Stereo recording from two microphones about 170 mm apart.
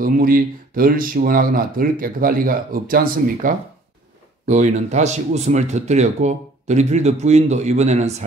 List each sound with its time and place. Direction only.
0.0 s speech: 55° right (ahead or behind)
4.5 s speech: 45° right (ahead or behind)